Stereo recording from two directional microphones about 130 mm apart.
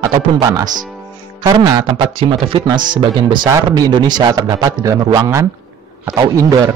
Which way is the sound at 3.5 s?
25° right (ahead or behind).